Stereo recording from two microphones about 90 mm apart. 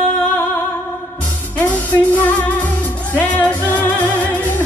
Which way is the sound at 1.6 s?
15° left (ahead or behind).